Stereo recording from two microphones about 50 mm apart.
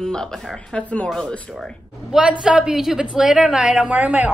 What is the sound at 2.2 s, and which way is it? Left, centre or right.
A woman's voice, centre.